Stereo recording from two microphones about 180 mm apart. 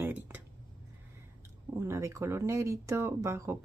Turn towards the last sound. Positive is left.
turn(degrees=-15)  # may be behind; listen again after turning